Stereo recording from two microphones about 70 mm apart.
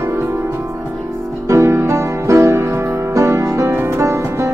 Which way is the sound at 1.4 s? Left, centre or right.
Right.